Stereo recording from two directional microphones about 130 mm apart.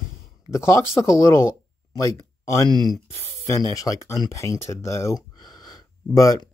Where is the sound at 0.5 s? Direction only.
20° left (ahead or behind).